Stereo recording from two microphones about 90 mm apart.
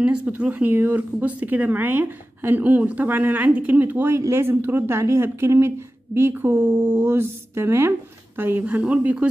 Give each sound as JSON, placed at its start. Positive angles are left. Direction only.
{"t": 0.0, "sound": "speech", "side_deg": -15}